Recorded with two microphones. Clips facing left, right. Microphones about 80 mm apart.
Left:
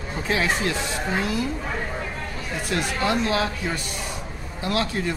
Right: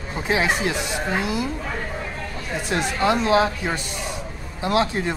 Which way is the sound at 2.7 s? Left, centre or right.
Right.